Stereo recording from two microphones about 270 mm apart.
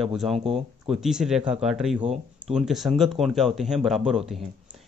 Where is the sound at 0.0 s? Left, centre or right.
Centre.